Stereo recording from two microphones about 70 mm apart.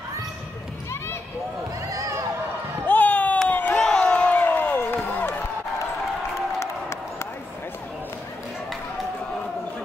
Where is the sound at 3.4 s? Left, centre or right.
Left.